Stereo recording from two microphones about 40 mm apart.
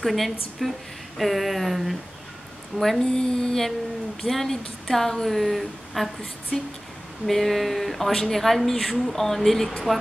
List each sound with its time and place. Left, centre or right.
0.0 s a woman's voice: centre
3.1 s a woman's voice: centre
6.5 s a woman's voice: centre
7.2 s a woman's voice: centre